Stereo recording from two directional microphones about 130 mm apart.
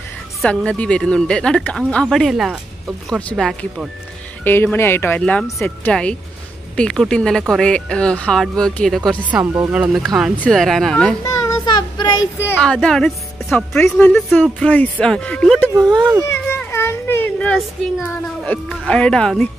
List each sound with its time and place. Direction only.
0.4 s speech: 10° left (ahead or behind)
3.1 s a woman's voice: 5° left (ahead or behind)
4.5 s speech: 15° left (ahead or behind)
5.2 s a woman's voice: 5° left (ahead or behind)
9.3 s speech: 15° right (ahead or behind)
9.7 s a woman's voice: 5° right (ahead or behind)
11.2 s child singing: 30° left (ahead or behind)
12.4 s speech: 15° left (ahead or behind)
12.6 s a woman's voice: 5° left (ahead or behind)
15.7 s speech: 30° right (ahead or behind)
16.3 s a sound: 20° left (ahead or behind)
17.6 s a woman's voice: centre (ahead or behind)